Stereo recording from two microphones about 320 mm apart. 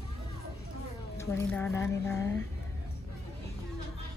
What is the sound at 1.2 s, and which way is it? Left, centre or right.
A woman's voice, centre.